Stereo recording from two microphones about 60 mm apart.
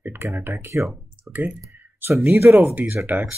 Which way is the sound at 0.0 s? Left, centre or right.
Right.